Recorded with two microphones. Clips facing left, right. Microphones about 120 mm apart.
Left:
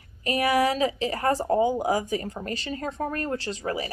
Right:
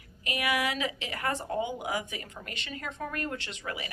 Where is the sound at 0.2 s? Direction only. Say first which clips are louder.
Left 8 dB; 35° left (ahead or behind).